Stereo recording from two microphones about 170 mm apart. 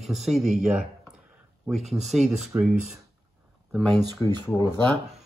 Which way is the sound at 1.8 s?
Centre (ahead or behind).